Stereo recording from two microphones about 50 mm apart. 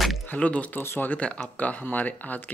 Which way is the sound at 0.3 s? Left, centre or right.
Left.